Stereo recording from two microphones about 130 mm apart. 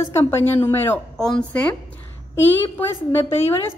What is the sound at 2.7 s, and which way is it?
Speech, 15° left (ahead or behind).